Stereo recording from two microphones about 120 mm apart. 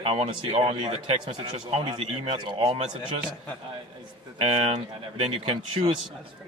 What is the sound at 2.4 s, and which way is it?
Speech, 45° right (ahead or behind).